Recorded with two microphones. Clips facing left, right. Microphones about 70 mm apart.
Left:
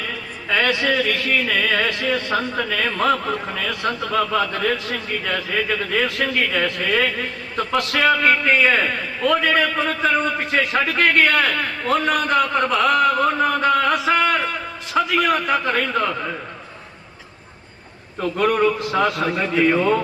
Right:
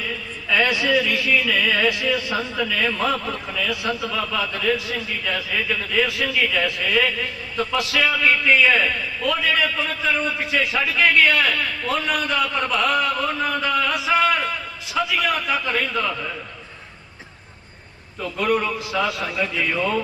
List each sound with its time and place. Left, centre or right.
0.6 s a man's voice: left
18.4 s a man's voice: left